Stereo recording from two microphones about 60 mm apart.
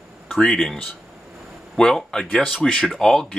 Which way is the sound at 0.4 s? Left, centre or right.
Centre.